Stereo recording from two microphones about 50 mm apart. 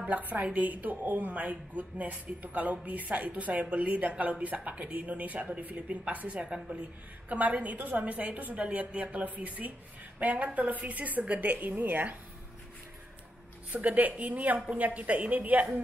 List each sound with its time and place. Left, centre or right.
0.3 s a woman's voice: right
13.7 s a woman's voice: right